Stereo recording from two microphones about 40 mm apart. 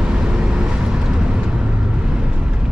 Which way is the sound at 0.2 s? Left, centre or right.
Right.